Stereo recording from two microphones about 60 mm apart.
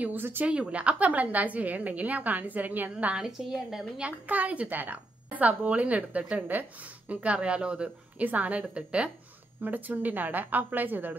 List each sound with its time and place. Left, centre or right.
0.0 s a woman's voice: right
0.5 s a woman's voice: centre
3.2 s a woman's voice: centre
4.0 s a woman's voice: right
9.6 s a woman's voice: right